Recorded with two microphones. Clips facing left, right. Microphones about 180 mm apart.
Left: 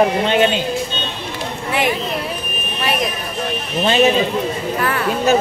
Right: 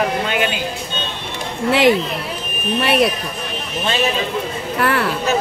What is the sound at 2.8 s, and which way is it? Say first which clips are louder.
Speech: right 5 dB; 70° right (ahead or behind).